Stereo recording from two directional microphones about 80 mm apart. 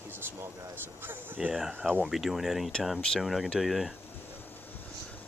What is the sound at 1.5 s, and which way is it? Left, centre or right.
Speech, centre.